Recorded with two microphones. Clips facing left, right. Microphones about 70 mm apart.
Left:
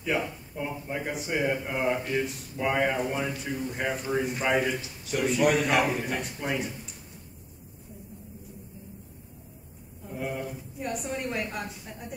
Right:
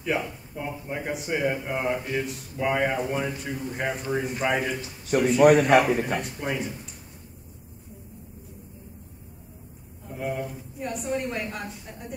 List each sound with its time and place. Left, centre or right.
0.0 s a man's voice: centre
5.4 s a man's voice: right
6.4 s a man's voice: centre
10.1 s a man's voice: centre